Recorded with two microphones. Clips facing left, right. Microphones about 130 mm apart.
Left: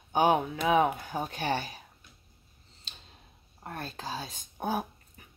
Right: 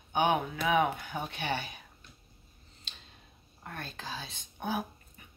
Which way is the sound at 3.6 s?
35° left (ahead or behind).